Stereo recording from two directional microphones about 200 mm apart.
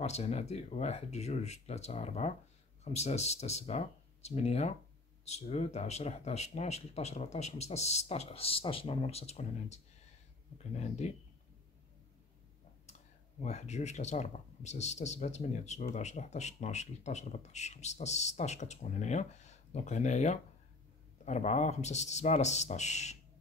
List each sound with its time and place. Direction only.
0.0 s speech: 30° left (ahead or behind)
13.4 s speech: 35° left (ahead or behind)